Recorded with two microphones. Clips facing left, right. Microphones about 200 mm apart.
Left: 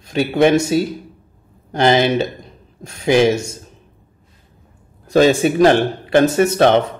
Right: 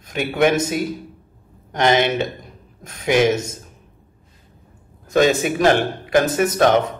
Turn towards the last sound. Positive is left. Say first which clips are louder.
# left 3 dB
turn(degrees=30)  # may be behind; listen again after turning